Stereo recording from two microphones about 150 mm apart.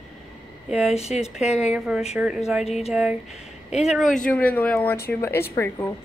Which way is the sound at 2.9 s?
5° right (ahead or behind).